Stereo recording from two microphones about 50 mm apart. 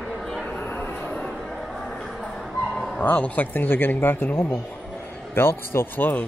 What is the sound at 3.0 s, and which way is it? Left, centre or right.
Speech, left.